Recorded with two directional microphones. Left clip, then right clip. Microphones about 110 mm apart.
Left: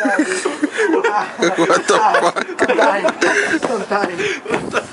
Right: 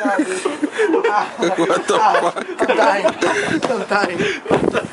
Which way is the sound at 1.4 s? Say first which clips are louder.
Left 2 dB; 5° right (ahead or behind).